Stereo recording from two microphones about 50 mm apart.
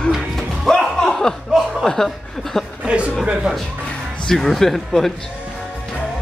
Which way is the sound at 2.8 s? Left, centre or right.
Right.